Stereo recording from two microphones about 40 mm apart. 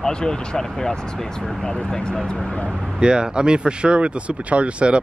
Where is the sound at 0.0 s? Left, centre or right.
Centre.